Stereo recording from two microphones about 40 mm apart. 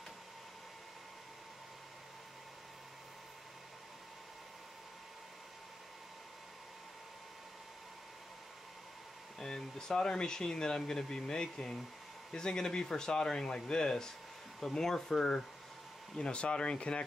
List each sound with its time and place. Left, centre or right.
9.4 s speech: centre
16.2 s speech: left